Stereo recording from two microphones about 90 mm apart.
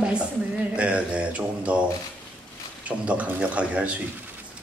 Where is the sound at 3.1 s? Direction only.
15° right (ahead or behind).